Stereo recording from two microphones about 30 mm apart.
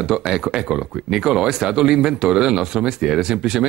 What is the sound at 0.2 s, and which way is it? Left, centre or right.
Speech, right.